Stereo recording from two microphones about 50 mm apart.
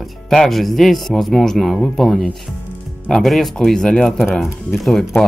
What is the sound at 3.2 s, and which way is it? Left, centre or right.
Speech, centre.